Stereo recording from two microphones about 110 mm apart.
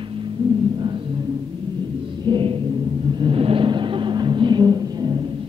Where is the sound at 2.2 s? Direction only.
50° right (ahead or behind).